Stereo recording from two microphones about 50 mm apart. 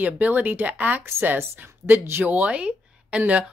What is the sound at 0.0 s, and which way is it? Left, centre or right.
Speech, right.